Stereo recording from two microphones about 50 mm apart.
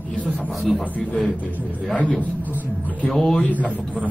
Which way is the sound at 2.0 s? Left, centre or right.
Left.